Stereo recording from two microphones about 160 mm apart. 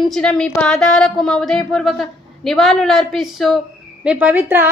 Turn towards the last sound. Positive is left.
turn(degrees=-10)  # may be behind; listen again after turning